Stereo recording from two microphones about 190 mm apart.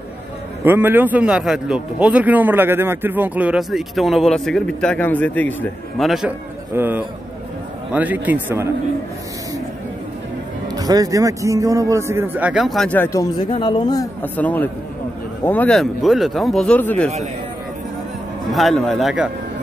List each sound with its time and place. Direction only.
0.7 s a man's voice: 10° right (ahead or behind)
10.7 s speech: 20° right (ahead or behind); by 13.3 s 15° left (ahead or behind)
13.6 s speech: 25° left (ahead or behind)
14.2 s a man's voice: 10° left (ahead or behind)
18.5 s a man's voice: centre (ahead or behind)